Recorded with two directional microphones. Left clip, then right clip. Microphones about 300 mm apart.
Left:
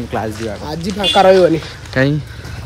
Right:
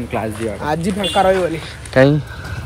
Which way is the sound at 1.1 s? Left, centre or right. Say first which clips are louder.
Left 6 dB; left.